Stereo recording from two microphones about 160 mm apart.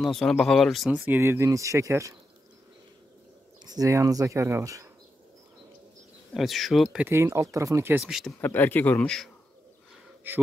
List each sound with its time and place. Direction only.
0.0 s speech: centre (ahead or behind); by 2.1 s 20° right (ahead or behind)
3.6 s speech: 20° right (ahead or behind)
6.3 s speech: centre (ahead or behind); by 8.0 s 15° right (ahead or behind)
8.0 s speech: centre (ahead or behind)
8.4 s speech: 10° left (ahead or behind)
10.3 s speech: 15° right (ahead or behind)